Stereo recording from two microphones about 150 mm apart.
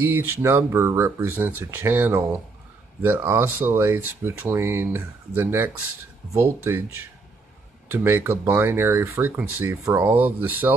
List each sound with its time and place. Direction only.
0.0 s speech: 15° right (ahead or behind)
7.9 s speech: 15° right (ahead or behind)